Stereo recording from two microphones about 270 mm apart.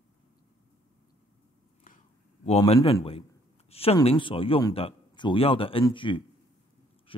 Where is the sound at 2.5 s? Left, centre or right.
Left.